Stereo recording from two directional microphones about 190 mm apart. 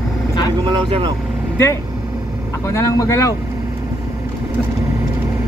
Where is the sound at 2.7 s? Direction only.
15° left (ahead or behind).